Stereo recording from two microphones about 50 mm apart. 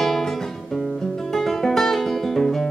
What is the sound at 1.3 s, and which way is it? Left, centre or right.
Music, centre.